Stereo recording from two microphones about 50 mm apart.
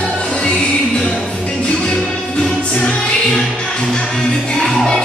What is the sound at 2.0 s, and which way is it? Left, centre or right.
Music, centre.